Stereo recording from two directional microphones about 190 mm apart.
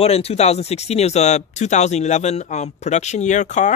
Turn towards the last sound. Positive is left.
turn(degrees=40)  # may be behind; listen again after turning